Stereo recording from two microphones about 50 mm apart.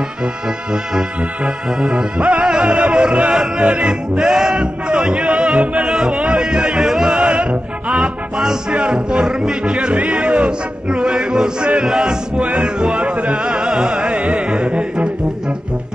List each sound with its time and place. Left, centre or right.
1.8 s speech: centre
2.2 s music: right
2.7 s speech: right
3.5 s music: right
4.2 s speech: centre
4.6 s music: centre
5.9 s speech: centre
6.1 s music: right
6.4 s speech: centre
8.7 s speech: centre
14.1 s music: right